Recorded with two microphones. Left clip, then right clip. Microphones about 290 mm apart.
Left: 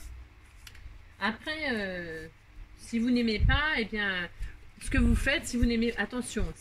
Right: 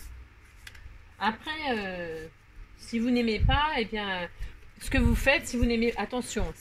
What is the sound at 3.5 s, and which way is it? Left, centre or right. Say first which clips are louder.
Speech: right 1 dB; centre.